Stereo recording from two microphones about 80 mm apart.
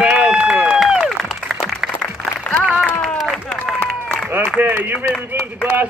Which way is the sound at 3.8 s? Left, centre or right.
Centre.